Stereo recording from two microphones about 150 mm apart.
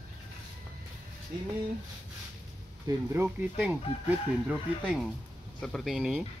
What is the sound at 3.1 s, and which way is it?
Speech, 15° right (ahead or behind).